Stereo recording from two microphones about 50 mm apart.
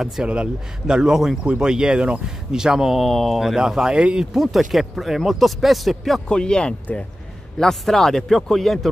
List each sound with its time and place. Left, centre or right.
0.0 s speech: centre
0.3 s speech: centre
2.5 s speech: centre
6.2 s a man's voice: centre